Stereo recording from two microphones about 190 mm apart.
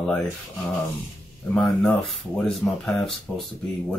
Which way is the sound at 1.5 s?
5° left (ahead or behind).